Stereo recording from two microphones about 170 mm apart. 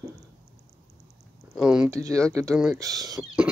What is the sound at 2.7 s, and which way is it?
Speech, 20° right (ahead or behind).